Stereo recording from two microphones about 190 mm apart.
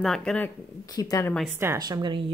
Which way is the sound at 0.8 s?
20° left (ahead or behind).